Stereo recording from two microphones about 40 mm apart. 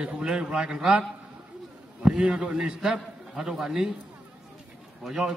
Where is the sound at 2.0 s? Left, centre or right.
Centre.